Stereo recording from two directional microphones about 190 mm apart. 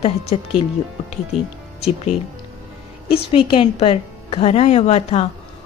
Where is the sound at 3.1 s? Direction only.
30° left (ahead or behind).